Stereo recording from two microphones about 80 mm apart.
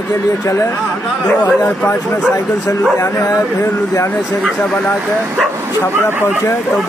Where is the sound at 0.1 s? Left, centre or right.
Left.